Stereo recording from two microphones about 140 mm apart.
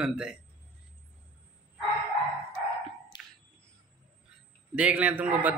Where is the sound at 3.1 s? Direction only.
30° left (ahead or behind).